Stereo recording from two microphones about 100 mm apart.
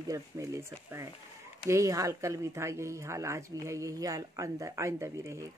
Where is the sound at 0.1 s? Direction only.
30° right (ahead or behind).